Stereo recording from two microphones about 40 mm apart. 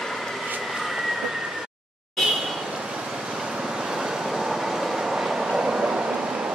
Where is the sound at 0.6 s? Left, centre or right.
Centre.